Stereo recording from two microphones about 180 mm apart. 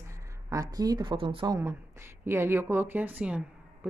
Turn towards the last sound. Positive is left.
turn(degrees=-5)  # may be behind; listen again after turning